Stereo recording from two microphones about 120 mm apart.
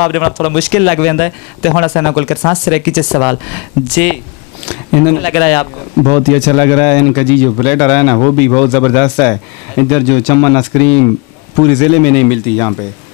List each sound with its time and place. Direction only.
0.0 s speech: 15° left (ahead or behind)